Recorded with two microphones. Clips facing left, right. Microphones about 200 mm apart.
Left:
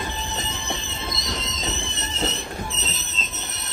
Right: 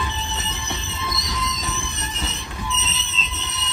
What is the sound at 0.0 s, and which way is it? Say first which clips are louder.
Train: even; 50° left (ahead or behind).